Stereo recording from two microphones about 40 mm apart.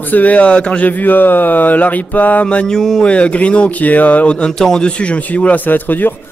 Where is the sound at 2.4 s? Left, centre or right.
Left.